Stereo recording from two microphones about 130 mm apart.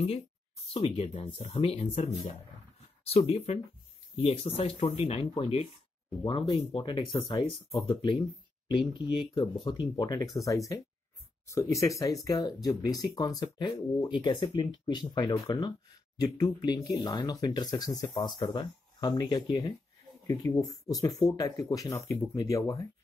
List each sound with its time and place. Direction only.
0.7 s speech: 50° left (ahead or behind)
7.2 s speech: 30° left (ahead or behind)